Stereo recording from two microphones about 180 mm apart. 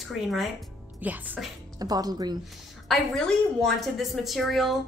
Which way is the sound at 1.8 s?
20° right (ahead or behind).